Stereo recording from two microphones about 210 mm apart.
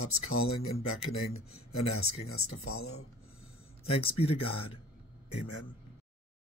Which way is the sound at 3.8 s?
25° left (ahead or behind).